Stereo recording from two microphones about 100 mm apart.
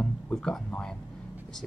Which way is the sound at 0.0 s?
5° left (ahead or behind).